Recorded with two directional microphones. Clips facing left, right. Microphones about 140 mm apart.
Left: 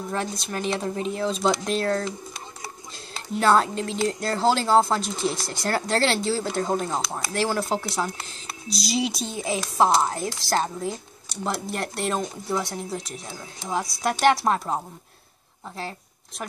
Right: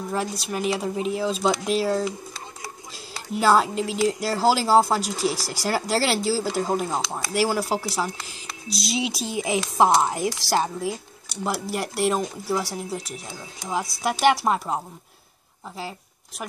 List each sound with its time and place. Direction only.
0.1 s speech: 5° right (ahead or behind)
3.3 s speech: 5° right (ahead or behind)
9.4 s speech: 15° right (ahead or behind)